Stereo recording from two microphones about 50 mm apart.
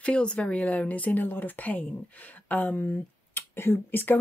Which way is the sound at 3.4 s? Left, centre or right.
Left.